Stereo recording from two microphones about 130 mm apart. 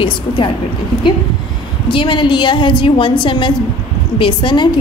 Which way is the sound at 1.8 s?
40° left (ahead or behind).